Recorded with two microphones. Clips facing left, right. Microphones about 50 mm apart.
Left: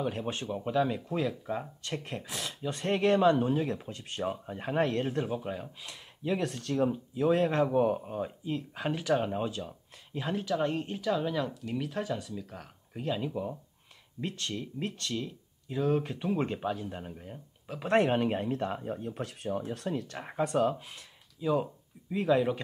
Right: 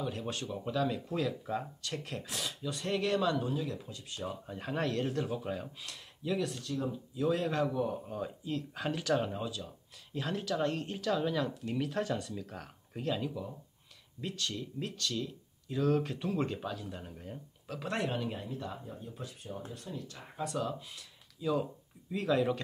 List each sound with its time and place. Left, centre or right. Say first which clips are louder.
0.0 s speech: left 4 dB; left; by 1.7 s centre
1.8 s speech: left 3 dB; left
2.6 s speech: left 6 dB; left
4.5 s speech: left 4 dB; left
6.2 s speech: left 3 dB; left
7.2 s speech: left 5 dB; left; by 9.4 s centre
9.4 s speech: left 5 dB; left
10.1 s speech: left 3 dB; centre
13.3 s speech: left 6 dB; left
17.2 s speech: even; centre
17.8 s speech: left 9 dB; left
20.4 s speech: left 7 dB; left
21.4 s speech: left 3 dB; centre